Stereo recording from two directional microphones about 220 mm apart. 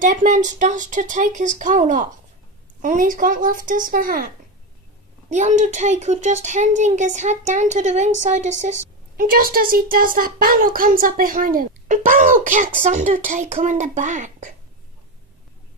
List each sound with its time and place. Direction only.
0.0 s speech: 35° right (ahead or behind)
5.3 s speech: 35° right (ahead or behind)